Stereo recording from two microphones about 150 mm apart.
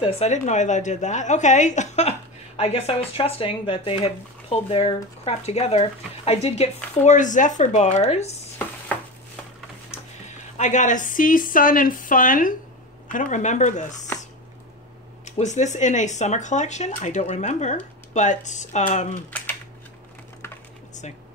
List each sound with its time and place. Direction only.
0.0 s a woman's voice: 50° left (ahead or behind)
9.8 s speech: 50° left (ahead or behind)
13.1 s a woman's voice: 55° left (ahead or behind)
15.2 s a woman's voice: 50° left (ahead or behind)